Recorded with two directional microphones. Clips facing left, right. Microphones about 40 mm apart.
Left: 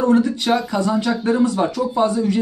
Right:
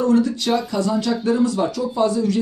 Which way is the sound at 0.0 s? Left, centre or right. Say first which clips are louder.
Left 1 dB; left.